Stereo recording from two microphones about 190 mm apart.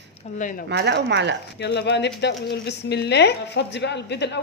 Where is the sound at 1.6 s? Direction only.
65° left (ahead or behind).